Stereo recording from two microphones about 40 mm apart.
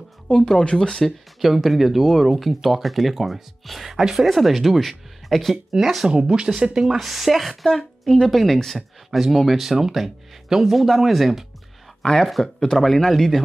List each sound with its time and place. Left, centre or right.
0.3 s speech: left
0.7 s a woman's voice: centre
1.4 s speech: centre
6.0 s speech: centre
7.0 s speech: centre
7.6 s a woman's voice: centre
12.0 s a woman's voice: centre